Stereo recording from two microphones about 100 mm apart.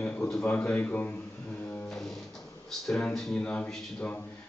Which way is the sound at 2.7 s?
5° left (ahead or behind).